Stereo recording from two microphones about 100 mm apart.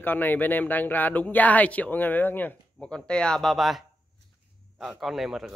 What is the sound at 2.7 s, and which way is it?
Speech, 10° left (ahead or behind).